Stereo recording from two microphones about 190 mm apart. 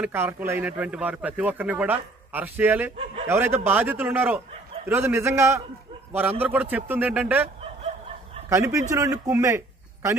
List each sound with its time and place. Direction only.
0.0 s speech: 10° right (ahead or behind)
8.5 s speech: 15° right (ahead or behind)